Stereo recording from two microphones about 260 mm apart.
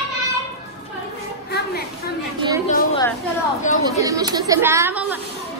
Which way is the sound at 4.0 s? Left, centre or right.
Centre.